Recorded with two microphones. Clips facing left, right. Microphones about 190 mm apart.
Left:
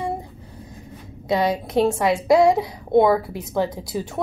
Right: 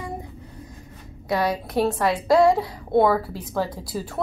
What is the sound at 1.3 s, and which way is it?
A woman's voice, 20° left (ahead or behind).